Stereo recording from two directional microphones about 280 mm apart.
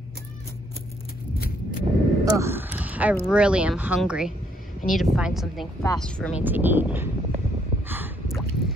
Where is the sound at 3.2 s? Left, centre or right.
Centre.